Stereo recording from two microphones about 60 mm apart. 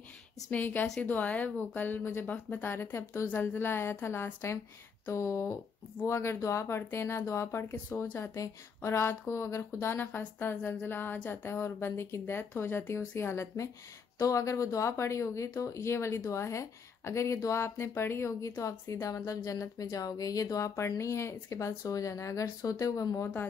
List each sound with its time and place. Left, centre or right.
0.5 s speech: left
9.9 s speech: left
14.1 s speech: left
17.6 s speech: left